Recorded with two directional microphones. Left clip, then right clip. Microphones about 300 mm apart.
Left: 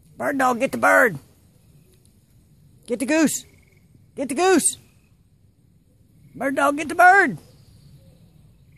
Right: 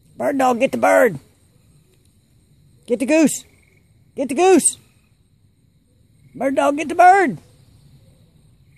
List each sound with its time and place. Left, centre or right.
0.2 s speech: right
2.8 s speech: right
6.3 s speech: centre